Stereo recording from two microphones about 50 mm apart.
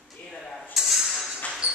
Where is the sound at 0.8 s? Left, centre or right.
Centre.